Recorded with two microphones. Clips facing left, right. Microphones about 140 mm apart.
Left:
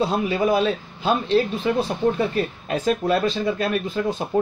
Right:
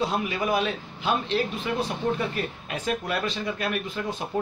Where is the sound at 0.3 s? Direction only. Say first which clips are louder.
Left 6 dB; 30° left (ahead or behind).